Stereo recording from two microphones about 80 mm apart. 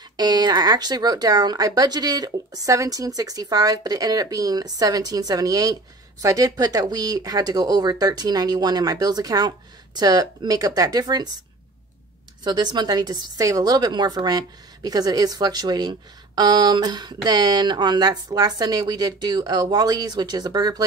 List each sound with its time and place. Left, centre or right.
0.2 s speech: right
12.4 s a woman's voice: right